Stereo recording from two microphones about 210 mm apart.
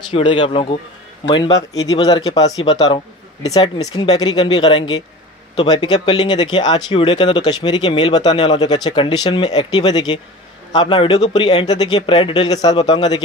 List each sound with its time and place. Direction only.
0.1 s speech: 25° left (ahead or behind)